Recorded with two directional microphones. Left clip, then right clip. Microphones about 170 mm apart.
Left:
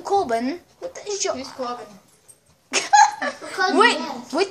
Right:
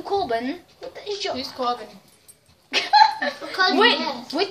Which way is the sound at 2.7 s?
55° left (ahead or behind).